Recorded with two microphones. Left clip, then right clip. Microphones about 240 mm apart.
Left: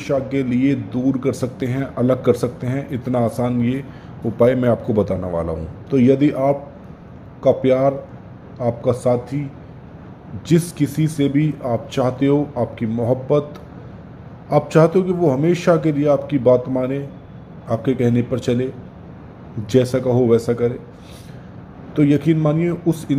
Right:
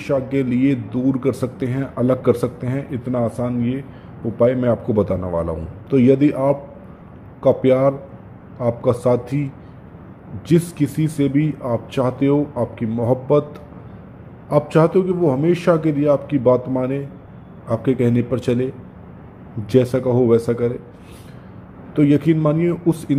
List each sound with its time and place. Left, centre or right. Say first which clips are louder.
0.0 s speech: even; centre
10.5 s speech: even; centre
21.9 s speech: right 1 dB; centre